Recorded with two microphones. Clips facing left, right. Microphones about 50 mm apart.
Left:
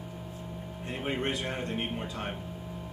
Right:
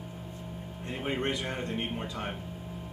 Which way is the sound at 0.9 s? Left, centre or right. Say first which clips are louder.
Even; centre.